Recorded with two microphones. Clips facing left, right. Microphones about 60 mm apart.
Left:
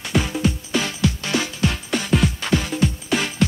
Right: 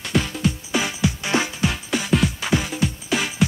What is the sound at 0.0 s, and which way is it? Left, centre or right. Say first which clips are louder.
Music: left 1 dB; centre.